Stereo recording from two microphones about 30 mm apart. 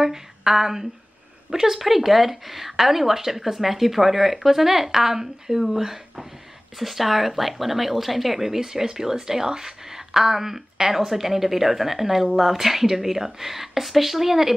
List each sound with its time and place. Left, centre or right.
0.0 s speech: centre
6.8 s speech: centre